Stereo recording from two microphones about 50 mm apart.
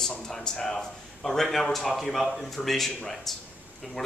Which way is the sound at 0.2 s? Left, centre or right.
Centre.